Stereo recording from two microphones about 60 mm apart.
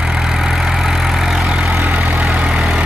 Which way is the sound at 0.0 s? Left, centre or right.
Centre.